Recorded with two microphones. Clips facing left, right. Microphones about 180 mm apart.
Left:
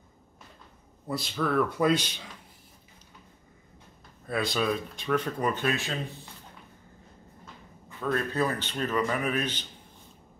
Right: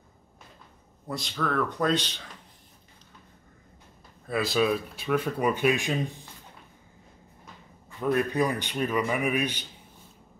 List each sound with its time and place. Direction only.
1.0 s speech: 5° left (ahead or behind)
4.3 s speech: centre (ahead or behind)
8.0 s speech: 15° right (ahead or behind)